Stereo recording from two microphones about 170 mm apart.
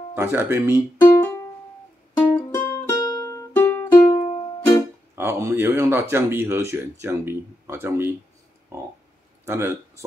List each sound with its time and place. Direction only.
0.1 s speech: 15° right (ahead or behind)
1.0 s music: 15° left (ahead or behind)
5.1 s speech: 15° right (ahead or behind)